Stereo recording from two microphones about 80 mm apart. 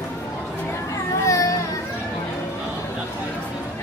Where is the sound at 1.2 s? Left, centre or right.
Left.